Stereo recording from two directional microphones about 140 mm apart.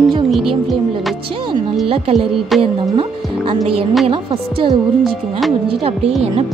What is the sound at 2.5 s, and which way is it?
Speech, centre (ahead or behind).